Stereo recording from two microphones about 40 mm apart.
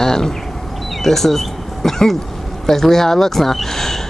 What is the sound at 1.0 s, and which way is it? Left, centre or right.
Speech, centre.